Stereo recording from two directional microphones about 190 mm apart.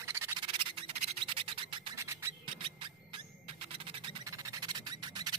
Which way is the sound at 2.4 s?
25° right (ahead or behind).